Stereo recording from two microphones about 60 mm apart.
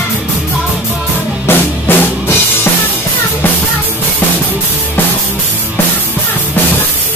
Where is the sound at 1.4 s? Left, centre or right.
Left.